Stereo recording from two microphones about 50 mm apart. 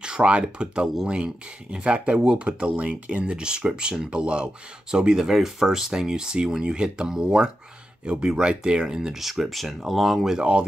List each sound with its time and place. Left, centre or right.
0.0 s speech: right